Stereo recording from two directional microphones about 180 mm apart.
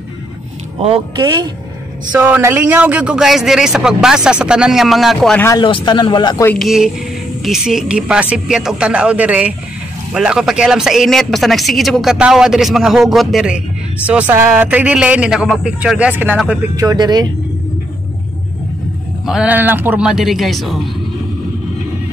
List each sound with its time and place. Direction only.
0.8 s speech: 30° right (ahead or behind)
2.1 s speech: 10° right (ahead or behind)
5.6 s a man's voice: 25° left (ahead or behind)
6.5 s speech: centre (ahead or behind)
16.7 s speech: 20° right (ahead or behind)
19.2 s speech: 5° right (ahead or behind)